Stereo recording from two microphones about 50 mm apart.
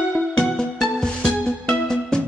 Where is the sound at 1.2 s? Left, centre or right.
Centre.